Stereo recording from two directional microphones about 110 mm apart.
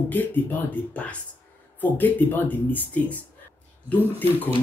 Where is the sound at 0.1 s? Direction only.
15° left (ahead or behind).